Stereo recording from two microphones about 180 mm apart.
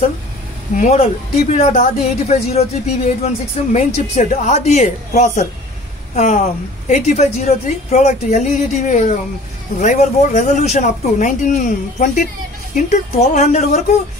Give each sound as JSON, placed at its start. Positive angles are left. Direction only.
{"t": 0.7, "sound": "a woman's voice", "side_deg": 40}